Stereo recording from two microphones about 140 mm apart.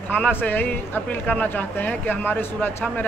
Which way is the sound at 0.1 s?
10° left (ahead or behind).